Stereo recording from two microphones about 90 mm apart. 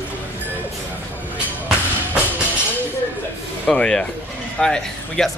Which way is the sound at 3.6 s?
10° left (ahead or behind).